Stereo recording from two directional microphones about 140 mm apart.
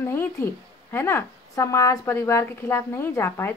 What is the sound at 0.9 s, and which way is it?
A woman's voice, 20° left (ahead or behind).